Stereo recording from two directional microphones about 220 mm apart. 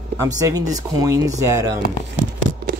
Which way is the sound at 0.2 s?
15° right (ahead or behind).